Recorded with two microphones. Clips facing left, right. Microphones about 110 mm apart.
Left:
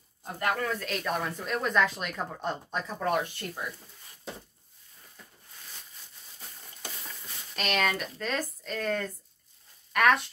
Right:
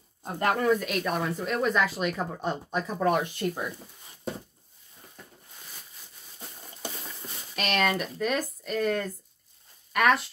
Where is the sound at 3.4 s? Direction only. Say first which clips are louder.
Right 10 dB; 25° right (ahead or behind).